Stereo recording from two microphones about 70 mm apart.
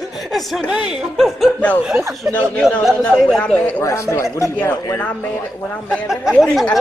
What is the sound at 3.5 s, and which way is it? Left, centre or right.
Speech, left.